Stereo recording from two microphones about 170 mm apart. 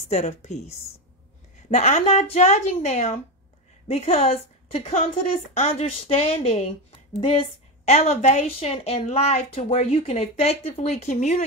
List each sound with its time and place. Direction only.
0.1 s a woman's voice: 40° left (ahead or behind)
1.7 s a woman's voice: 40° left (ahead or behind)